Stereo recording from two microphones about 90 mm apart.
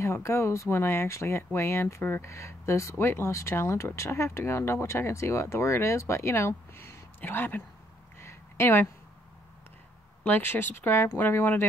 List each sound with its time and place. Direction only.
0.0 s speech: 30° left (ahead or behind)
8.2 s a sound: 30° left (ahead or behind)
10.2 s speech: 25° left (ahead or behind)